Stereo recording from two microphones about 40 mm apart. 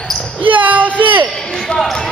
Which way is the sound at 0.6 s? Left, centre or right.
Right.